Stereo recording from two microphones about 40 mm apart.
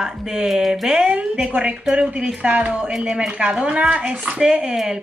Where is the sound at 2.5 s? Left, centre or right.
Right.